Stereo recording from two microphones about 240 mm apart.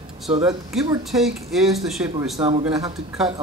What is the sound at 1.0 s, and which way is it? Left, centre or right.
Speech, centre.